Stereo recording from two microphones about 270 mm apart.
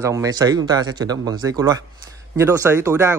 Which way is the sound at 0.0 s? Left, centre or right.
Centre.